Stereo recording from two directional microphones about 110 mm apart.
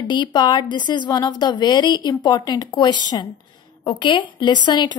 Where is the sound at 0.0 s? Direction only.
45° left (ahead or behind).